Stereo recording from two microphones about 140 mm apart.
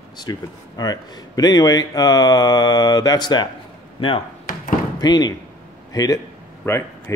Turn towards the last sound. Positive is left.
turn(degrees=20)  # may be behind; listen again after turning